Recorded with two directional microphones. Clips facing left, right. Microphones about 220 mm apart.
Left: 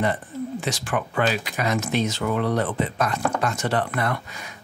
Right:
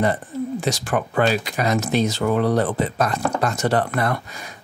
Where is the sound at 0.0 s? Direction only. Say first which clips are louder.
Right 3 dB; 40° right (ahead or behind).